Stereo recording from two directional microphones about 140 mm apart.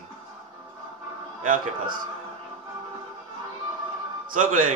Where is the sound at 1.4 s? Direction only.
70° right (ahead or behind).